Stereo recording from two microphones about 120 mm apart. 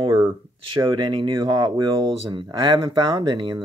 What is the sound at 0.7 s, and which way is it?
Speech, 35° right (ahead or behind).